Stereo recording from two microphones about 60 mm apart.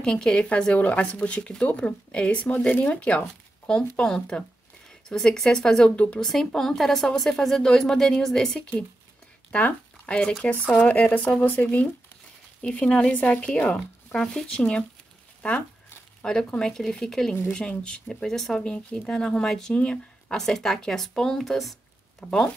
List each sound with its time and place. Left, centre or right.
0.0 s a woman's voice: centre
6.2 s speech: centre
10.0 s a woman's voice: centre
12.8 s a woman's voice: centre
16.2 s speech: centre